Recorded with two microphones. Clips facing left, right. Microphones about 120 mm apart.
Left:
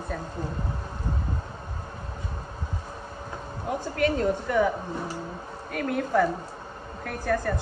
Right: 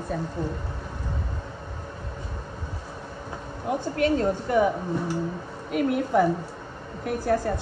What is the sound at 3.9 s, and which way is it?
Speech, 30° right (ahead or behind).